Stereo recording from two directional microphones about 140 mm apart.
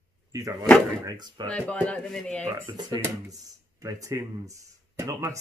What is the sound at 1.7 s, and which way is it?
Speech, 5° left (ahead or behind).